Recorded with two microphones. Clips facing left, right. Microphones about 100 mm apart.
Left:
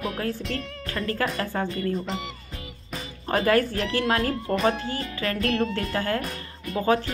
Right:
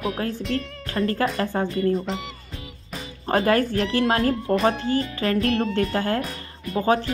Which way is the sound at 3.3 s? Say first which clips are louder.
Right 2 dB; 35° right (ahead or behind).